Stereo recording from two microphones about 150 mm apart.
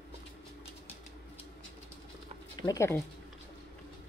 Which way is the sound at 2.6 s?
20° left (ahead or behind).